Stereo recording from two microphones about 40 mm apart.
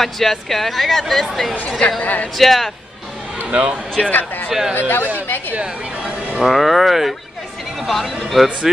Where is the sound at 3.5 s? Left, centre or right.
Right.